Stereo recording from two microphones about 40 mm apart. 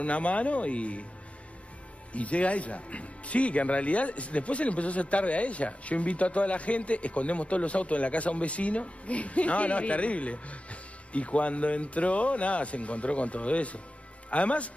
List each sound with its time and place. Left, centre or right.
0.0 s speech: left
2.1 s speech: left